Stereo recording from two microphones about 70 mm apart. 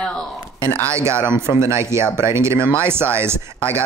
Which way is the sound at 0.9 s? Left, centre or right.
Right.